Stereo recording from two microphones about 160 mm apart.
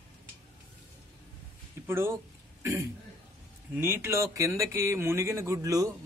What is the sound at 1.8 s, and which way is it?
A man's voice, 15° right (ahead or behind).